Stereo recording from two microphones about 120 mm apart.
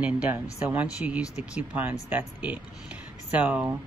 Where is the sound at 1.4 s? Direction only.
15° right (ahead or behind).